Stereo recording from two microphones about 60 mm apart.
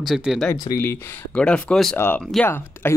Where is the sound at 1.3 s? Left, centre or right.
Centre.